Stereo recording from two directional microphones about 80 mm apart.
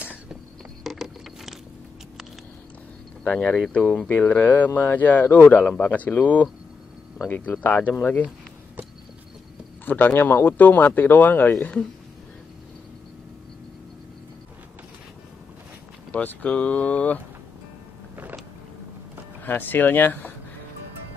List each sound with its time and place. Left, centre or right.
0.0 s a sound: centre
0.8 s vehicle: centre
3.3 s speech: centre
9.8 s speech: left
16.1 s speech: centre
19.4 s speech: left